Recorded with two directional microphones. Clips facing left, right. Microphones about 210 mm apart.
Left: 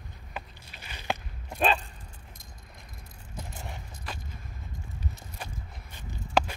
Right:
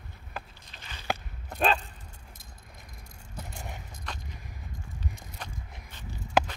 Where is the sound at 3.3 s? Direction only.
Centre (ahead or behind).